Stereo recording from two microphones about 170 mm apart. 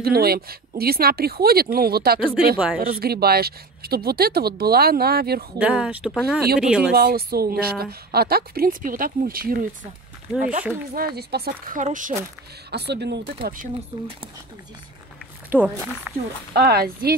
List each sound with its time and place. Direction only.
0.0 s speech: 65° right (ahead or behind)
2.5 s speech: 5° right (ahead or behind)
2.8 s speech: 60° right (ahead or behind)
5.6 s speech: 10° right (ahead or behind)
6.9 s speech: 65° right (ahead or behind)
11.1 s speech: 65° right (ahead or behind)
11.8 s speech: 50° right (ahead or behind)
12.7 s speech: 80° right
13.4 s speech: 55° right (ahead or behind)
13.9 s speech: 25° right (ahead or behind)
15.5 s speech: 10° right (ahead or behind)
16.5 s speech: 65° right (ahead or behind)